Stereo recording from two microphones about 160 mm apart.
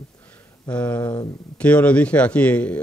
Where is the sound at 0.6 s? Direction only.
10° left (ahead or behind).